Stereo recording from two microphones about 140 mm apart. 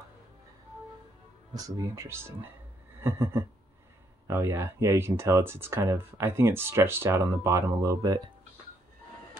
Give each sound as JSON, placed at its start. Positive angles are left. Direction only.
{"t": 1.5, "sound": "speech", "side_deg": -25}